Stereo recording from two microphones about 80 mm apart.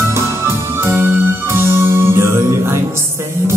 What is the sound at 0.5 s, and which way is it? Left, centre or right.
Music, right.